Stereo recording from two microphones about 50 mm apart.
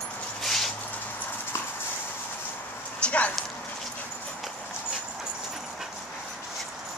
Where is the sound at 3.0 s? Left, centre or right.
Left.